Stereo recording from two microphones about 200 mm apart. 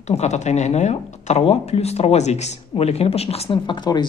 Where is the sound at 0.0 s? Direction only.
35° left (ahead or behind).